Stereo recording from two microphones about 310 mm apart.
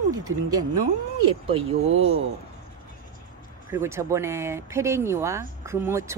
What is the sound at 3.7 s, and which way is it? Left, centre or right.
Speech, centre.